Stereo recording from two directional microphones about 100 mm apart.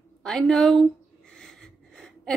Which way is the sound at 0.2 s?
5° left (ahead or behind).